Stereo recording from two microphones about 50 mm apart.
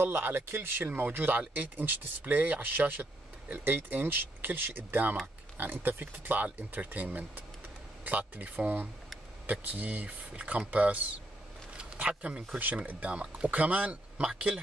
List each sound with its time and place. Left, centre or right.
0.0 s speech: right
11.7 s a sound: right
12.8 s speech: right